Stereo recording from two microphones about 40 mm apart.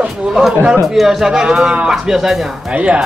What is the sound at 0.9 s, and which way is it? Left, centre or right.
Speech, centre.